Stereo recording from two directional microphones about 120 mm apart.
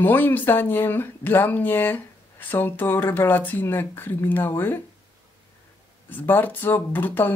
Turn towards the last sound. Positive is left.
turn(degrees=15)  # may be behind; listen again after turning